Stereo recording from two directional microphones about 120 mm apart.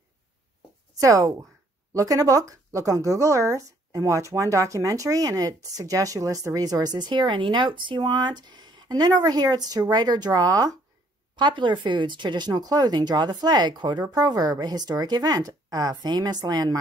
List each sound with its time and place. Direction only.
0.9 s speech: 30° right (ahead or behind)